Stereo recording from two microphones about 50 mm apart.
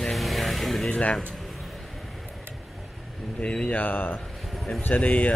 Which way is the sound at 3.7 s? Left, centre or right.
Left.